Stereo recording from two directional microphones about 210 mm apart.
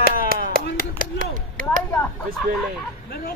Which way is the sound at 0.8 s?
40° right (ahead or behind).